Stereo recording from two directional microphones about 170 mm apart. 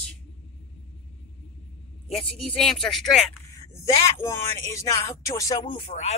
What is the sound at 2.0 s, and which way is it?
Speech, 5° left (ahead or behind).